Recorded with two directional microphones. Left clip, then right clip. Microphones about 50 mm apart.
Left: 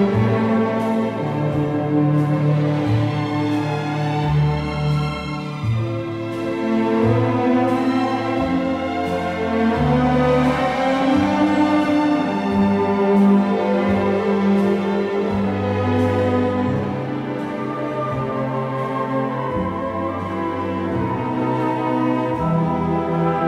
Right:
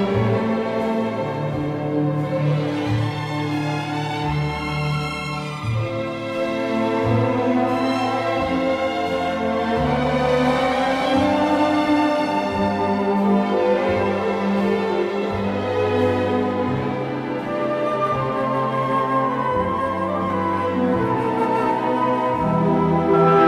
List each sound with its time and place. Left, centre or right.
6.7 s music: left
9.6 s music: left